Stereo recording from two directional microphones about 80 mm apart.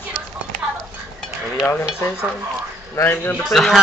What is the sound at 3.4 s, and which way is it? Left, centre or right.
Speech, centre.